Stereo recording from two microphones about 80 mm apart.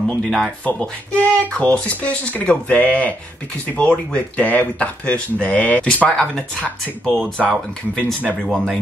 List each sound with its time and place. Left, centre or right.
0.0 s speech: centre
0.7 s speech: centre